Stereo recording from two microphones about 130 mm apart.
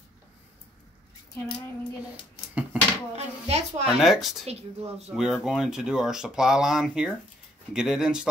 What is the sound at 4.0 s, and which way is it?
Speech, centre (ahead or behind).